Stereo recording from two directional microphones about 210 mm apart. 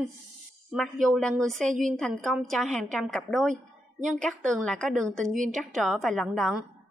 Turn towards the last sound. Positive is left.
turn(degrees=0)  # may be behind; listen again after turning